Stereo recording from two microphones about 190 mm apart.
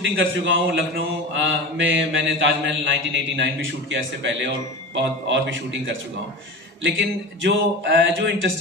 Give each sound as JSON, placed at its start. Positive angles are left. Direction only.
{"t": 0.0, "sound": "speech", "side_deg": -75}